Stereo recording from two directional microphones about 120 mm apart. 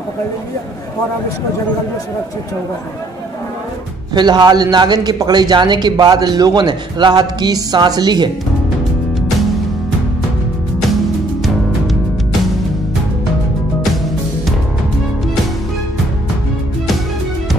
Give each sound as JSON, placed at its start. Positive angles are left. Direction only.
{"t": 4.1, "sound": "a man's voice", "side_deg": -35}